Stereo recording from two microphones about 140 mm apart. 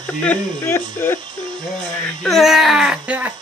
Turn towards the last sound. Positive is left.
turn(degrees=-10)  # may be behind; listen again after turning